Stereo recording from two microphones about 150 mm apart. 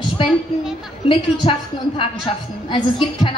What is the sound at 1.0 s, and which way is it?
A woman's voice, 30° left (ahead or behind).